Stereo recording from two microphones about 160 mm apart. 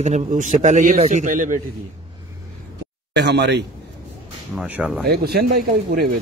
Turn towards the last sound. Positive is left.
turn(degrees=-70)  # may be behind; listen again after turning